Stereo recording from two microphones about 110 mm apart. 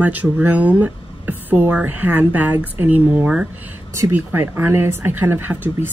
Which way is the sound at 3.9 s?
20° right (ahead or behind).